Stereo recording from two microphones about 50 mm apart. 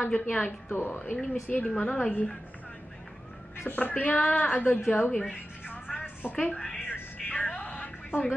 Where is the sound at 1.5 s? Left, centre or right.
Left.